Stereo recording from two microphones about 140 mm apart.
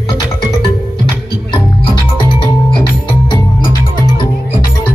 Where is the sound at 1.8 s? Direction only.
35° left (ahead or behind).